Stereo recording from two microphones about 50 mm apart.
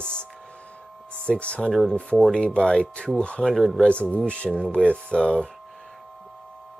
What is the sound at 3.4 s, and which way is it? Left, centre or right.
Speech, centre.